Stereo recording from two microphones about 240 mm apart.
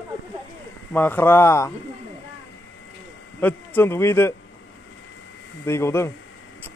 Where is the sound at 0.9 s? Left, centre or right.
Centre.